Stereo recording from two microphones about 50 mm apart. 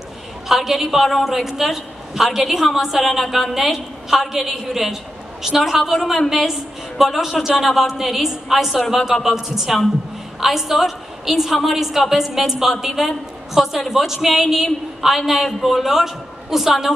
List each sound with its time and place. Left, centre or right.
0.5 s a woman's voice: centre